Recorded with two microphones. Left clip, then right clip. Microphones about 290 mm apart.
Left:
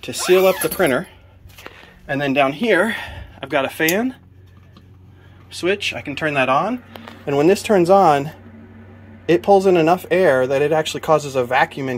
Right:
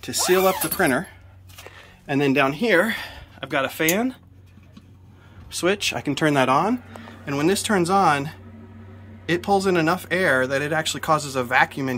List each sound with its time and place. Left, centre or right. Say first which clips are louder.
0.4 s speech: left 4 dB; centre
5.5 s speech: left 2 dB; centre
7.2 s speech: left 7 dB; centre
9.3 s speech: left 7 dB; centre